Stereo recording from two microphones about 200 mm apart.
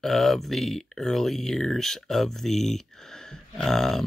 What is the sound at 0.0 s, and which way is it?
Speech, centre (ahead or behind).